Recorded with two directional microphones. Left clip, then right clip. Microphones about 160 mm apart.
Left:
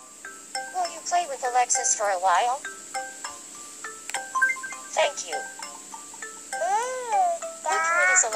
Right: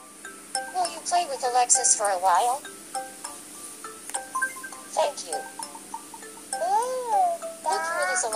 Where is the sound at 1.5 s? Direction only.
45° left (ahead or behind).